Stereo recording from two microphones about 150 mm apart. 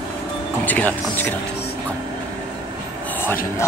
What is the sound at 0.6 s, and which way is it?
Speech, 10° left (ahead or behind).